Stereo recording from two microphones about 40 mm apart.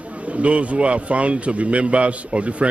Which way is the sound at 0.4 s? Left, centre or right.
Right.